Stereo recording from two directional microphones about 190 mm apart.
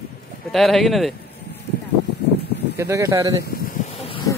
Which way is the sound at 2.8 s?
15° right (ahead or behind).